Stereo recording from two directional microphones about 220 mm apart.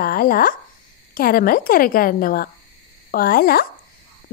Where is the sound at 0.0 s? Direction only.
40° left (ahead or behind).